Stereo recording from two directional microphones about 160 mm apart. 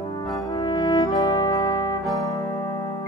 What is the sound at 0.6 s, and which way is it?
Brass instrument, 25° left (ahead or behind).